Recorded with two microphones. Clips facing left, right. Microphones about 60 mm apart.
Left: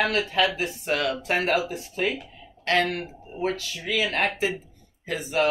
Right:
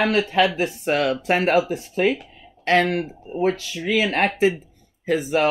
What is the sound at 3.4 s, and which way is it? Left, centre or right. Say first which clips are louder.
Speech: right 6 dB; right.